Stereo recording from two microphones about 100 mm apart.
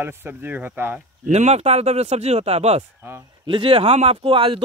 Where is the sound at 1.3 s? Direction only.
90° right.